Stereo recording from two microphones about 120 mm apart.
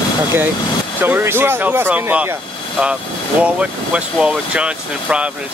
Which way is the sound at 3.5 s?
10° right (ahead or behind).